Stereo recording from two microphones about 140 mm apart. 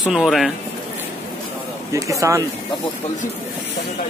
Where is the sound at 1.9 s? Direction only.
20° right (ahead or behind).